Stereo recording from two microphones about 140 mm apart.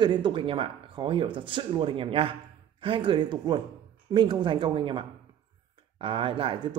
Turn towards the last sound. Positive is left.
turn(degrees=-35)  # may be behind; listen again after turning